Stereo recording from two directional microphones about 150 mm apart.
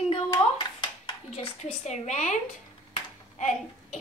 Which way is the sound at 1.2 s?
50° left (ahead or behind).